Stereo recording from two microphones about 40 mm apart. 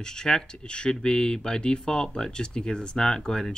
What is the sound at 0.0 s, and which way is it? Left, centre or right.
Speech, centre.